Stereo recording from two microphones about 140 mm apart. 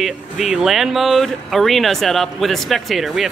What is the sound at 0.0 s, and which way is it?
Speech, 5° right (ahead or behind).